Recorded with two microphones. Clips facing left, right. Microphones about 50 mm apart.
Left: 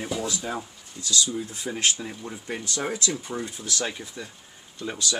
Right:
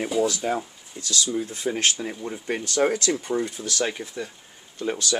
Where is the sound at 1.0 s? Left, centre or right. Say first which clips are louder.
Left 1 dB; right.